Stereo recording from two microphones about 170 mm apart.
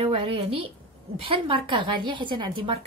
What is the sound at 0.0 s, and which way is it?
A woman's voice, 35° right (ahead or behind).